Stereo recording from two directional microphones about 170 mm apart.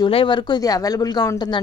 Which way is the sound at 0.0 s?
30° left (ahead or behind).